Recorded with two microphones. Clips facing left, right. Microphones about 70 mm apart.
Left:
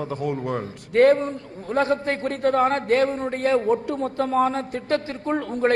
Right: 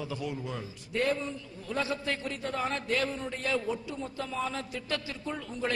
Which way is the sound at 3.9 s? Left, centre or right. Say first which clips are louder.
Left 12 dB; left.